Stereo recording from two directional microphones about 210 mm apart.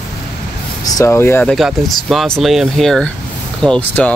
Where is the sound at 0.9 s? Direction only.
15° left (ahead or behind).